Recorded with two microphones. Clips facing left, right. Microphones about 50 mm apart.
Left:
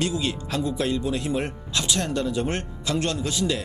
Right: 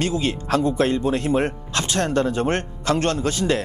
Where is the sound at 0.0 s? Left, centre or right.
Right.